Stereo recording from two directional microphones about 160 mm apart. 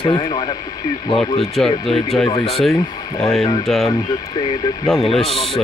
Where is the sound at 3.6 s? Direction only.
Centre (ahead or behind).